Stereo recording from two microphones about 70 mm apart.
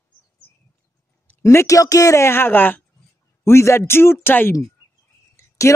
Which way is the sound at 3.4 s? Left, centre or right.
Left.